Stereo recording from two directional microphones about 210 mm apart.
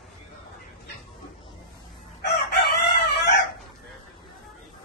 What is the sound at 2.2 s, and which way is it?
Chicken, 50° left (ahead or behind).